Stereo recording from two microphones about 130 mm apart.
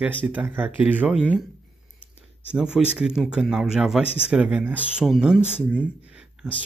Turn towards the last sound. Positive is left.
turn(degrees=-10)  # may be behind; listen again after turning